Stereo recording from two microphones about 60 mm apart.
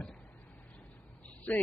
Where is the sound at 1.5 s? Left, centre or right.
Left.